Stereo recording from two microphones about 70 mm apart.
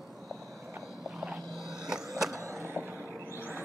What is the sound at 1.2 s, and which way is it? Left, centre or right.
Skateboard, centre.